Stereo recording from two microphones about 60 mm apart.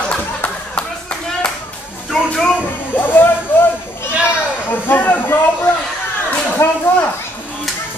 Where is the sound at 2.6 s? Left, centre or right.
Left.